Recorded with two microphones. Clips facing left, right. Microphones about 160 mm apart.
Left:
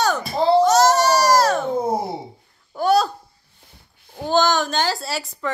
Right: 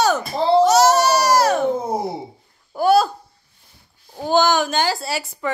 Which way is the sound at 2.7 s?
5° right (ahead or behind).